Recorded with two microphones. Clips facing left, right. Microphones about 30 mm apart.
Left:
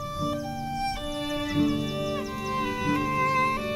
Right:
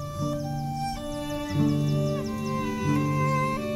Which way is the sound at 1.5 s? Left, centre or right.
Left.